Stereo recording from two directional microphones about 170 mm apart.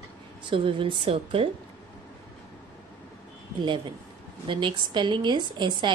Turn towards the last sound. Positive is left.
turn(degrees=-25)  # may be behind; listen again after turning